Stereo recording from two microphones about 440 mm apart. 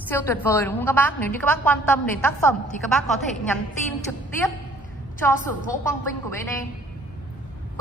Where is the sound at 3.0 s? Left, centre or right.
Centre.